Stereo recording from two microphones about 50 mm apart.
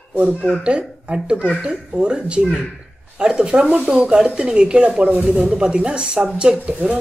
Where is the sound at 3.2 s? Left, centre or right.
Centre.